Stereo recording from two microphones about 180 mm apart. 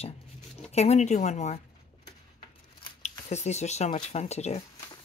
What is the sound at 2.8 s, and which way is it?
Speech, 40° left (ahead or behind).